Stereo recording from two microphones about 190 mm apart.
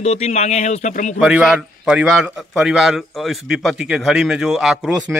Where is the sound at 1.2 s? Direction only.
Centre (ahead or behind).